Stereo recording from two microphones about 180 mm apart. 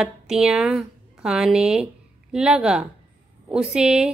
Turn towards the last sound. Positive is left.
turn(degrees=-5)  # may be behind; listen again after turning